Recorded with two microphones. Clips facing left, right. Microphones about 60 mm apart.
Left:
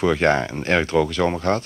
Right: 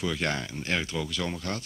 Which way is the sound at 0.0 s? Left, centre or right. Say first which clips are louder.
Left 12 dB; left.